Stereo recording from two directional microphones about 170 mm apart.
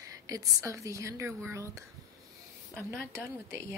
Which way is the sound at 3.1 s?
15° right (ahead or behind).